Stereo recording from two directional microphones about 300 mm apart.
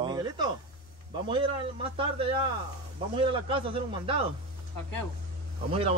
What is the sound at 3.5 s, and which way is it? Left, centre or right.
Speech, centre.